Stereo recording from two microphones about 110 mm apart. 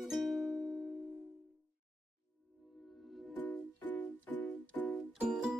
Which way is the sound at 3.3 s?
15° left (ahead or behind).